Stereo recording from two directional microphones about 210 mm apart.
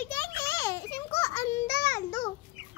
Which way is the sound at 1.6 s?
50° left (ahead or behind).